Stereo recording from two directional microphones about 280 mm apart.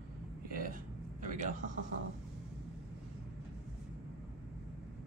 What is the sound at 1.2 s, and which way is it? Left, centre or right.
Speech, right.